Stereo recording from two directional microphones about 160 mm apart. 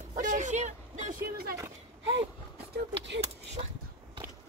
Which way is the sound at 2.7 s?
90° right.